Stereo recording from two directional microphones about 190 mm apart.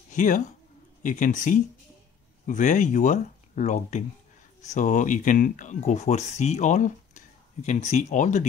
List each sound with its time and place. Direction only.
0.1 s speech: 40° left (ahead or behind)